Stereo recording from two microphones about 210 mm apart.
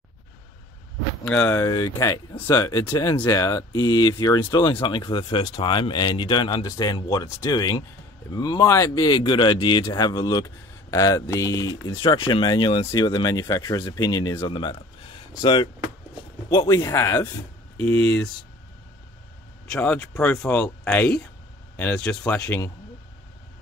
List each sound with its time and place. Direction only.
1.2 s speech: 10° left (ahead or behind)
19.7 s speech: 10° left (ahead or behind)